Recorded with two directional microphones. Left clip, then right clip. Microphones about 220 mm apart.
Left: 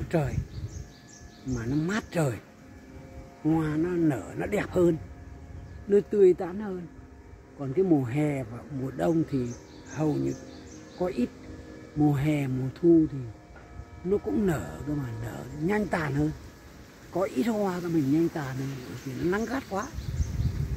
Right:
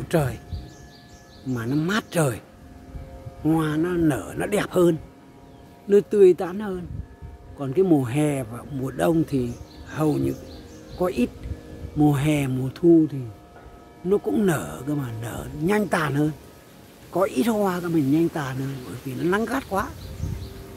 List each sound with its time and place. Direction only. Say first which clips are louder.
0.1 s speech: right 6 dB; 10° right (ahead or behind)
1.5 s speech: right 5 dB; 10° right (ahead or behind)
3.4 s speech: right 4 dB; 10° right (ahead or behind)
14.0 s speech: right 5 dB; 10° right (ahead or behind)